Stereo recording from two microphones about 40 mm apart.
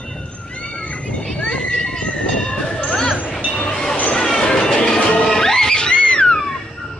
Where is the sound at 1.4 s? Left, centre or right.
Left.